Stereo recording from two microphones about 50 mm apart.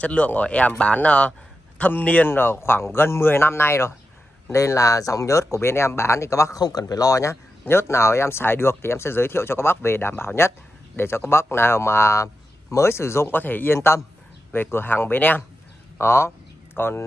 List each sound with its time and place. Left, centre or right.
0.0 s a man's voice: left
2.2 s speech: left
4.5 s speech: left
7.6 s speech: left
13.3 s speech: left
13.7 s speech: left
14.5 s speech: left
16.0 s speech: left